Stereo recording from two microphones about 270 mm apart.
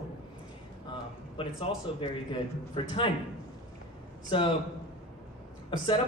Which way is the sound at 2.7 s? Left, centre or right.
Centre.